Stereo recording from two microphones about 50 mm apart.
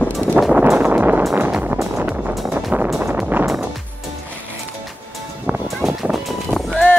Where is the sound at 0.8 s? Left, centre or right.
Right.